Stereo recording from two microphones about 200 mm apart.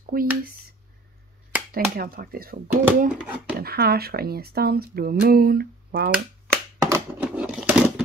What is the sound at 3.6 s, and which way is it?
Speech, 50° right (ahead or behind).